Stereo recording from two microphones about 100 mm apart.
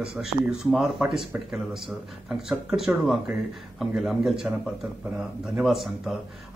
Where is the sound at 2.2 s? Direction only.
5° right (ahead or behind).